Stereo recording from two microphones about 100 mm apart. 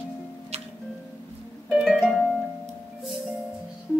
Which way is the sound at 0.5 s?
90° right.